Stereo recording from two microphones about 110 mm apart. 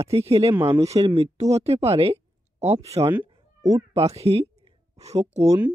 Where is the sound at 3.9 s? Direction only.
70° right (ahead or behind).